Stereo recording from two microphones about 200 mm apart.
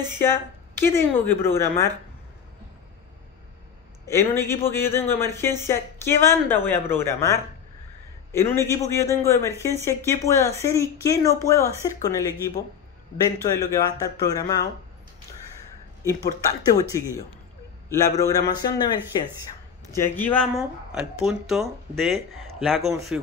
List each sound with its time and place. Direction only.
0.2 s speech: 10° left (ahead or behind)
4.0 s speech: 15° left (ahead or behind)
16.0 s speech: 15° left (ahead or behind)
17.8 s speech: 15° left (ahead or behind)
20.0 s speech: 10° left (ahead or behind)
20.9 s speech: 5° right (ahead or behind)